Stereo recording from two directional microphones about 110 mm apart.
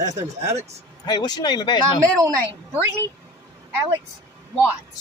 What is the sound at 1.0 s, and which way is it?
Speech, 40° left (ahead or behind).